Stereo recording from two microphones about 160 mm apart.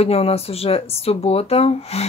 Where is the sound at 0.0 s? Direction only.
40° left (ahead or behind).